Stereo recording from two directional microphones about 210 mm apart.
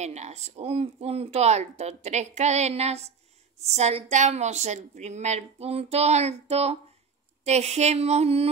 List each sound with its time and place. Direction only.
0.0 s a woman's voice: 30° right (ahead or behind)